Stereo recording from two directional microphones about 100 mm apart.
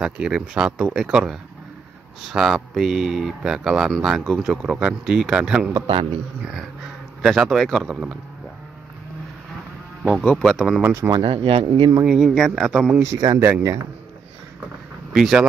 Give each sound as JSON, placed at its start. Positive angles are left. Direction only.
{"t": 0.0, "sound": "speech", "side_deg": -5}
{"t": 7.2, "sound": "speech", "side_deg": 0}
{"t": 10.0, "sound": "speech", "side_deg": 0}
{"t": 10.8, "sound": "speech", "side_deg": -25}
{"t": 11.1, "sound": "speech", "side_deg": -55}
{"t": 12.0, "sound": "speech", "side_deg": -5}
{"t": 13.0, "sound": "speech", "side_deg": -35}
{"t": 13.4, "sound": "speech", "side_deg": -25}
{"t": 15.1, "sound": "speech", "side_deg": -5}